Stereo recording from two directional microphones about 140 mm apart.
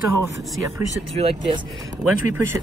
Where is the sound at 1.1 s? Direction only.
45° right (ahead or behind).